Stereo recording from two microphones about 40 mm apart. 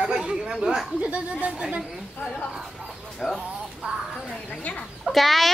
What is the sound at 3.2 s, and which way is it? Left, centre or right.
Speech, centre.